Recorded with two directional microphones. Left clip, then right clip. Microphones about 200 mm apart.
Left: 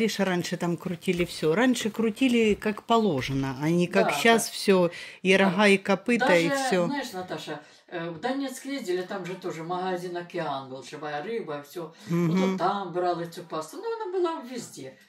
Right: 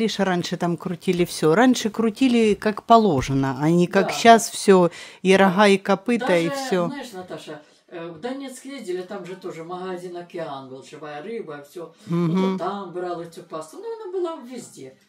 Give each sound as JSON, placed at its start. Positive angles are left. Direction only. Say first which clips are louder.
{"t": 0.0, "sound": "speech", "louder": "right 4 dB", "side_deg": -15}
{"t": 6.9, "sound": "speech", "louder": "left 1 dB", "side_deg": -5}
{"t": 12.1, "sound": "music", "louder": "right 3 dB", "side_deg": -15}
{"t": 12.5, "sound": "speech", "louder": "left 1 dB", "side_deg": -5}